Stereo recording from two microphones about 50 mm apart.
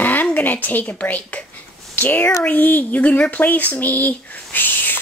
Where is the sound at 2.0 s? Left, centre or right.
Left.